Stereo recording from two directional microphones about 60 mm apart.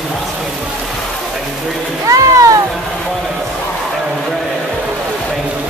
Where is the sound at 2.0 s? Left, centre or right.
Right.